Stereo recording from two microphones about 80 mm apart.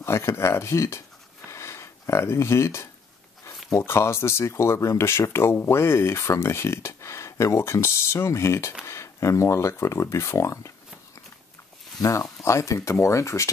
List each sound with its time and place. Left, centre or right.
0.0 s speech: left
1.5 s a sound: left
3.7 s speech: left
12.0 s speech: left